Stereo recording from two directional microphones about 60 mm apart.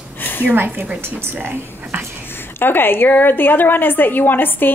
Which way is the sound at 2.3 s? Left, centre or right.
Left.